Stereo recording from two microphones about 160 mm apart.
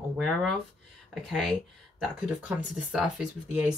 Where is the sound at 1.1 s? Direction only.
Centre (ahead or behind).